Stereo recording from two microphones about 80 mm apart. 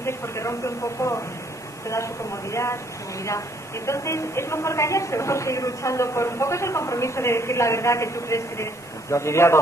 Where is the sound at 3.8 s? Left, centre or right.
Left.